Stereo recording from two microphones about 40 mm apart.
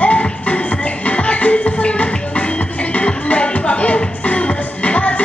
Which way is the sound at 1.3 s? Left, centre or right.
Left.